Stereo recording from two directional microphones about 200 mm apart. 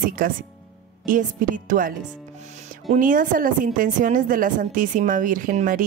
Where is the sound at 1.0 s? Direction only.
40° right (ahead or behind).